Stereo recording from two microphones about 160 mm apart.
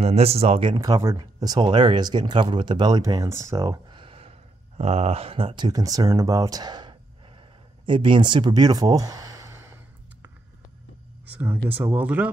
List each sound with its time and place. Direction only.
0.0 s speech: 40° right (ahead or behind); by 9.8 s 20° right (ahead or behind)
11.7 s speech: 10° right (ahead or behind)